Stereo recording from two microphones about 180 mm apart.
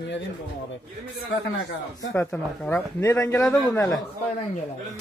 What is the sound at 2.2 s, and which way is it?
A man's voice, 10° left (ahead or behind).